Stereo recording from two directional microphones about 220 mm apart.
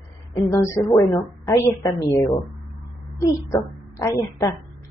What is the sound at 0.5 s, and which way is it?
A woman's voice, 10° left (ahead or behind).